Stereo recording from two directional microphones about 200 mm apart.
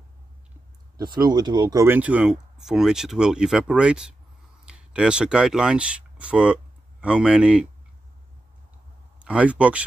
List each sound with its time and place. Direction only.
0.9 s speech: 20° right (ahead or behind)
9.2 s speech: 5° right (ahead or behind)